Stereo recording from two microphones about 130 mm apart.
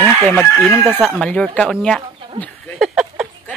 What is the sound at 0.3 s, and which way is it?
Chicken, 10° left (ahead or behind).